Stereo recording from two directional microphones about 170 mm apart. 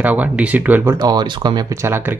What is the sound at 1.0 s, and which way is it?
Speech, 25° right (ahead or behind).